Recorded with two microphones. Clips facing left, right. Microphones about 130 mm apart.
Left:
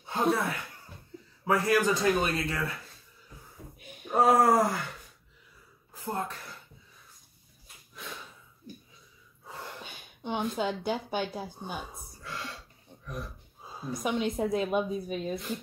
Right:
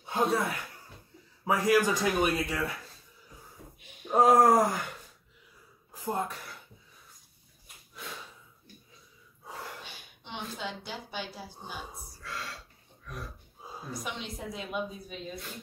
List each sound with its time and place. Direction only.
0.0 s a sound: 15° right (ahead or behind)
1.4 s a man's voice: 15° right (ahead or behind)
4.1 s a man's voice: 15° right (ahead or behind)
6.0 s a man's voice: 15° right (ahead or behind)
9.8 s a woman's voice: 50° left (ahead or behind)
13.9 s a woman's voice: 50° left (ahead or behind)